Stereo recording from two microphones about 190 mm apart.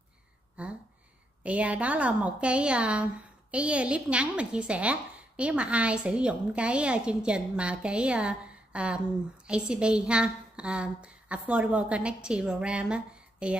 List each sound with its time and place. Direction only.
1.4 s a woman's voice: 5° right (ahead or behind)